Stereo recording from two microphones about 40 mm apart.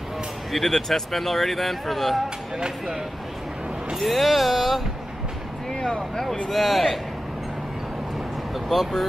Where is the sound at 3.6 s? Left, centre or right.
Centre.